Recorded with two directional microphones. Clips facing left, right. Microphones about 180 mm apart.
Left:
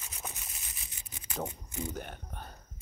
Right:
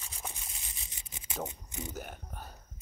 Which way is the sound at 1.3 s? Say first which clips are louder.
Left 2 dB; 15° right (ahead or behind).